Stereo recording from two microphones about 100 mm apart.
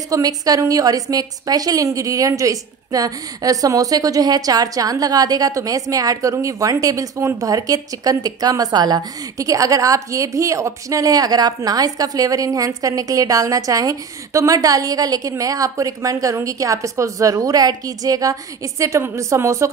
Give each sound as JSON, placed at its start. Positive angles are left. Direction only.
{"t": 0.1, "sound": "a woman's voice", "side_deg": -40}